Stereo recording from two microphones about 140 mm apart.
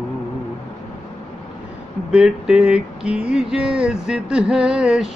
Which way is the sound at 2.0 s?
5° right (ahead or behind).